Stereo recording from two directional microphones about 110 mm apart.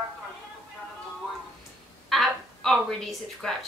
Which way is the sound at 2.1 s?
Centre (ahead or behind).